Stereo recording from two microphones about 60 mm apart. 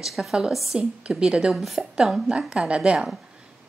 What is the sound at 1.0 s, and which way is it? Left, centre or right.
Speech, centre.